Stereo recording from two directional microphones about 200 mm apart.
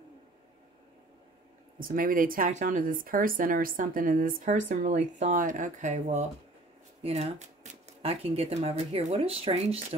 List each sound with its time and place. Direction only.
1.8 s speech: 45° right (ahead or behind)